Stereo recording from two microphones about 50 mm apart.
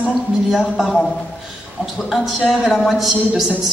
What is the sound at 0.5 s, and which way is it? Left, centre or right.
A man's voice, centre.